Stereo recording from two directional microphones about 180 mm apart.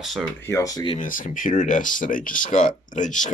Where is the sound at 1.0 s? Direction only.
45° left (ahead or behind).